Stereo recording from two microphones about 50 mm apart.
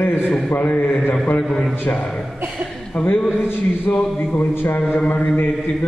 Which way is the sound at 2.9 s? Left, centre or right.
Left.